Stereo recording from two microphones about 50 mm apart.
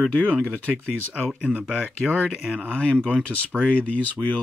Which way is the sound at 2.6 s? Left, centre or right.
Left.